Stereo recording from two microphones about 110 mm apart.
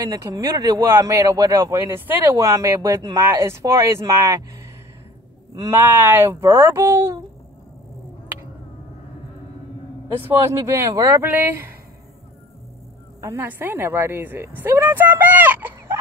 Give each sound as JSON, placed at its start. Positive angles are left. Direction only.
{"t": 0.0, "sound": "speech", "side_deg": -35}
{"t": 5.7, "sound": "speech", "side_deg": -20}
{"t": 10.2, "sound": "speech", "side_deg": -25}
{"t": 13.2, "sound": "speech", "side_deg": -20}